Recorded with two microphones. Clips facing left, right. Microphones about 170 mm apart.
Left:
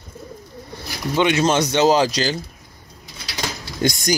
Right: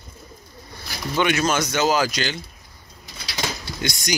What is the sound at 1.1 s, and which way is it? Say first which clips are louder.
Speech: left 4 dB; 20° left (ahead or behind).